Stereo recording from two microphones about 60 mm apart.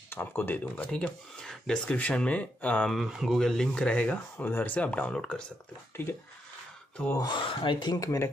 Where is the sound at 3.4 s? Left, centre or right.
Centre.